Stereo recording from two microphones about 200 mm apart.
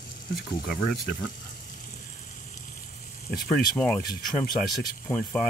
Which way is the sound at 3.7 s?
5° left (ahead or behind).